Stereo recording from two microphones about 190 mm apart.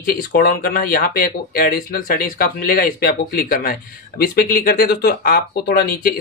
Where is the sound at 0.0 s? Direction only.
50° left (ahead or behind).